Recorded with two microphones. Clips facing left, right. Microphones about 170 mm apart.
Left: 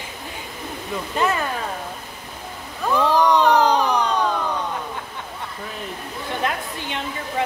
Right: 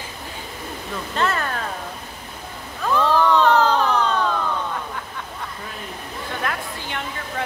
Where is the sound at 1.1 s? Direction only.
10° left (ahead or behind).